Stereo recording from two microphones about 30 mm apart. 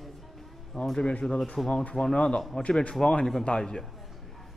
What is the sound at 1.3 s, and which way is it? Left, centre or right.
Speech, left.